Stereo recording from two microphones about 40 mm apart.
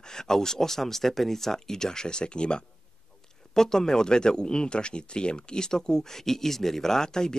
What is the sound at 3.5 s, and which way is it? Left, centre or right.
Speech, centre.